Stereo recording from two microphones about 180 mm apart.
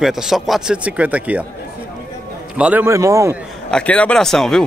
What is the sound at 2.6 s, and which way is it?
Speech, 10° right (ahead or behind).